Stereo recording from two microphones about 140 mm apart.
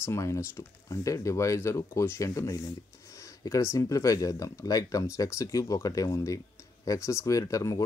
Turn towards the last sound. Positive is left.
turn(degrees=25)  # may be behind; listen again after turning